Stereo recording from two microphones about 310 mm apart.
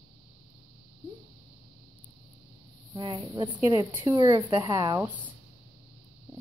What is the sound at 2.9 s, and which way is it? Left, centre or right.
A woman's voice, centre.